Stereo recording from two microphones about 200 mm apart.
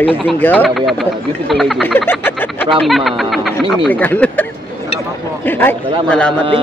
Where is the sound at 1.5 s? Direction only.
Centre (ahead or behind).